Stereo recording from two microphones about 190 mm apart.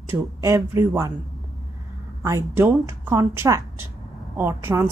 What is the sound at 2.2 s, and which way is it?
Speech, 15° right (ahead or behind).